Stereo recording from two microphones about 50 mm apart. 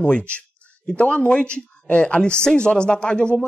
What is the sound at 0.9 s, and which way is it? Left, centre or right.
Speech, left.